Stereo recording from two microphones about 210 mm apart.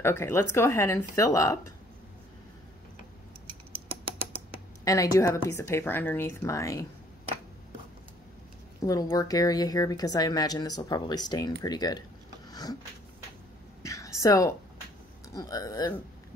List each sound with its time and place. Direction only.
0.0 s speech: 10° left (ahead or behind)
4.8 s speech: 15° left (ahead or behind)
8.8 s a woman's voice: 15° left (ahead or behind)
12.4 s a sound: 20° left (ahead or behind)
13.8 s a sound: 15° left (ahead or behind)
15.3 s speech: 15° left (ahead or behind)